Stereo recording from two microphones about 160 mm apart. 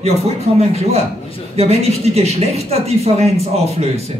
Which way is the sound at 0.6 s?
40° right (ahead or behind).